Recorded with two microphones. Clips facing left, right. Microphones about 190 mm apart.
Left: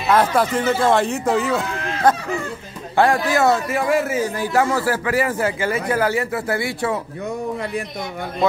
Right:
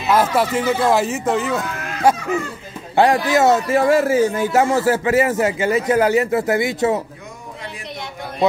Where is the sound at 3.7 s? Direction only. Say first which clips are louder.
Right 5 dB; 35° right (ahead or behind).